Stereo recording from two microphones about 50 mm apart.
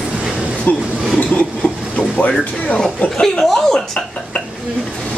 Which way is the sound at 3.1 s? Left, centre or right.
Centre.